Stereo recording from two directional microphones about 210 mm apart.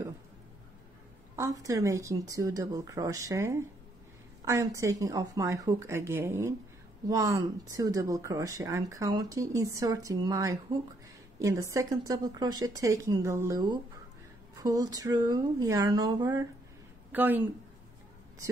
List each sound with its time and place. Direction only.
1.3 s speech: 15° right (ahead or behind)